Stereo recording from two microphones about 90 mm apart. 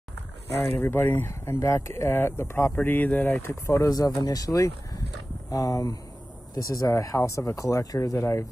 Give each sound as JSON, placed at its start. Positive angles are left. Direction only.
{"t": 0.7, "sound": "speech", "side_deg": 20}
{"t": 3.6, "sound": "speech", "side_deg": 35}